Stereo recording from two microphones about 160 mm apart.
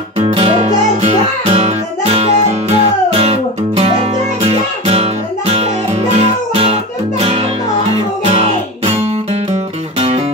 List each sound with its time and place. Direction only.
0.2 s music: 40° right (ahead or behind)
8.3 s music: 40° right (ahead or behind)